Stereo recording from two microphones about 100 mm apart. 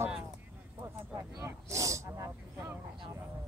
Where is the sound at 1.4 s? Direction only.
30° right (ahead or behind).